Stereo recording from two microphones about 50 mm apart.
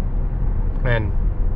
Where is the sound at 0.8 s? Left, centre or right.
Centre.